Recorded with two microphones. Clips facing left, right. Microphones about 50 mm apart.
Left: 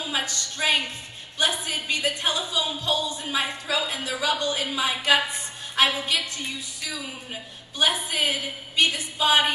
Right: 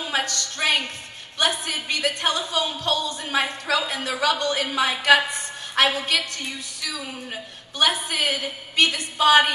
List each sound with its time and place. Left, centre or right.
0.0 s a sound: right
1.4 s a woman's voice: right
7.7 s a woman's voice: right